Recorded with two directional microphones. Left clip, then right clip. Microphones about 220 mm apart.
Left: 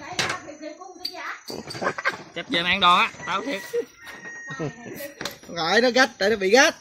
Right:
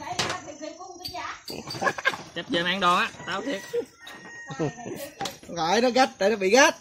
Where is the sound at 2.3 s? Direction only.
5° left (ahead or behind).